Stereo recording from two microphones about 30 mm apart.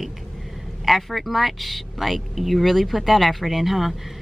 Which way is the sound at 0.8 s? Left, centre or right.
Centre.